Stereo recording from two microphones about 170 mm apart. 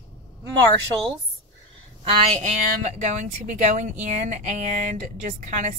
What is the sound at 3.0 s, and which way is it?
A woman's voice, 45° right (ahead or behind).